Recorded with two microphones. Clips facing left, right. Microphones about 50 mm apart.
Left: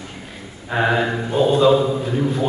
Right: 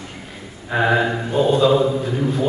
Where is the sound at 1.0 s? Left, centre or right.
Centre.